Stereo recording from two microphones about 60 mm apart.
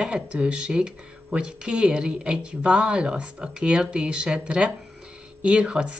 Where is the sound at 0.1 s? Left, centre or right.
Centre.